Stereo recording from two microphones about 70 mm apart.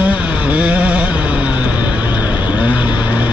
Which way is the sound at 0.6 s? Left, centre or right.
Centre.